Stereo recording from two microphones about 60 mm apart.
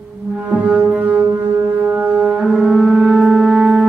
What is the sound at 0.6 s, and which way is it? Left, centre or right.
Music, right.